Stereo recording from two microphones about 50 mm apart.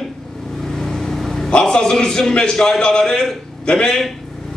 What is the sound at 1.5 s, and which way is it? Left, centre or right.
A man's voice, centre.